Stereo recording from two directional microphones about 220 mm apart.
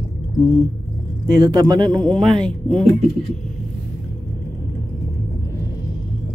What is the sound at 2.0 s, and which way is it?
Speech, centre (ahead or behind).